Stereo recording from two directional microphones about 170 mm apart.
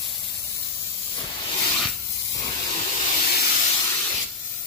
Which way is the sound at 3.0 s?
40° left (ahead or behind).